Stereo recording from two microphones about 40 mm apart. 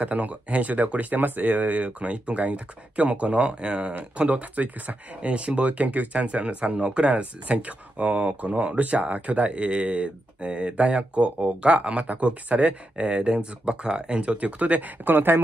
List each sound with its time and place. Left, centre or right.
0.0 s speech: right